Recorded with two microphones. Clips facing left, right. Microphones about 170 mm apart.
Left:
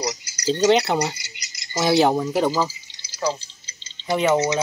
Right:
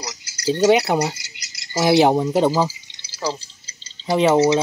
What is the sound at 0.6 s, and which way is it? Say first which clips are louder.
Speech: right 2 dB; 10° right (ahead or behind).